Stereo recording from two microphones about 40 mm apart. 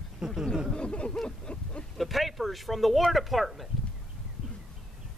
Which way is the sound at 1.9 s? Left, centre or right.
Centre.